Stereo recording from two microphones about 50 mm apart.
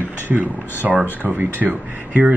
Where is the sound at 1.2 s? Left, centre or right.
Right.